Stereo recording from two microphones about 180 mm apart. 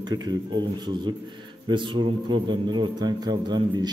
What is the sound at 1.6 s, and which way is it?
A man's voice, 25° right (ahead or behind).